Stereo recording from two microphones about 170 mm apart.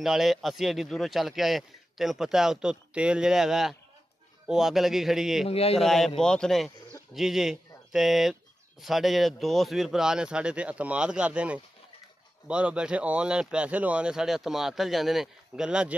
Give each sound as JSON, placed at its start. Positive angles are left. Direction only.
{"t": 0.0, "sound": "a man's voice", "side_deg": 0}
{"t": 5.5, "sound": "speech", "side_deg": 35}
{"t": 5.8, "sound": "a man's voice", "side_deg": 0}